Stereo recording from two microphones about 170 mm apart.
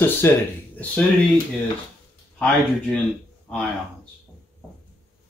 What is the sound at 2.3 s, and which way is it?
Speech, 10° left (ahead or behind).